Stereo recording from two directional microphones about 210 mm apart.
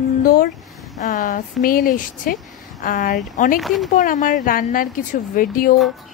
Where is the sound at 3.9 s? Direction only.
35° left (ahead or behind).